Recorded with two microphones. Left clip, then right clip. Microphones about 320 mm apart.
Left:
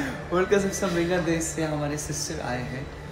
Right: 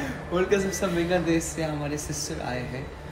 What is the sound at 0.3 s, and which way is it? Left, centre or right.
Speech, centre.